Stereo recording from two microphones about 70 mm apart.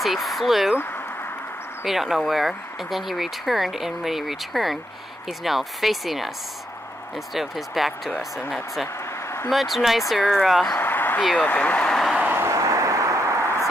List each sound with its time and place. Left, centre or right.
0.0 s speech: centre
1.9 s speech: centre
7.3 s speech: centre
9.5 s speech: centre
10.8 s a sound: left
11.1 s speech: centre
11.4 s speech: left
12.2 s vehicle: right
12.4 s vehicle: right